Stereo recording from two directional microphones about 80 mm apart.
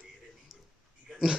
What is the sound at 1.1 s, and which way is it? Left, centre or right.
Oink, centre.